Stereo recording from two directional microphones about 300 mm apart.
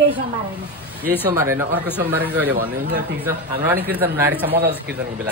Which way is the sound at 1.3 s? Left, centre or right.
Centre.